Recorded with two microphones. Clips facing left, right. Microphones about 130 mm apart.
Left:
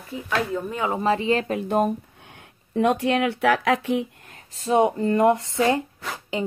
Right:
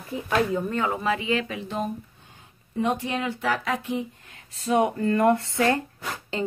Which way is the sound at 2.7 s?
80° left.